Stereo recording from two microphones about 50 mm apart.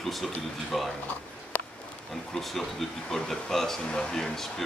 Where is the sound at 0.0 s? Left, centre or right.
Centre.